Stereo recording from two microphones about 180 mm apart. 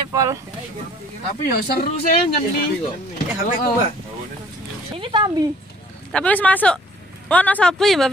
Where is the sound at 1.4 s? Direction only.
55° left (ahead or behind).